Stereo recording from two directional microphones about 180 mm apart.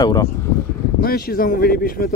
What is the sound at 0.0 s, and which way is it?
Speech, 20° left (ahead or behind).